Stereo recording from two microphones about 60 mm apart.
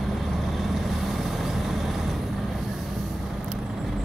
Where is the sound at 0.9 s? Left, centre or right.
Centre.